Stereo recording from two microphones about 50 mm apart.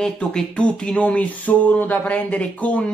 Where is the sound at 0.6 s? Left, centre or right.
Left.